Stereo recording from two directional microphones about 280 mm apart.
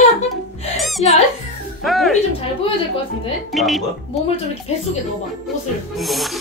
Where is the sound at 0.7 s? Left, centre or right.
Centre.